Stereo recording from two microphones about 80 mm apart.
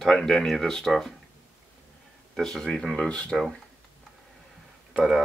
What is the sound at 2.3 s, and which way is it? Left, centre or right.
Speech, centre.